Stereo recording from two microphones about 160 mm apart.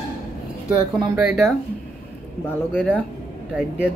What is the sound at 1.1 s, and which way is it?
Speech, 15° right (ahead or behind).